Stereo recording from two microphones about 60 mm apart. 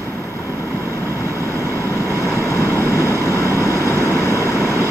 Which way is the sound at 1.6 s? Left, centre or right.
Right.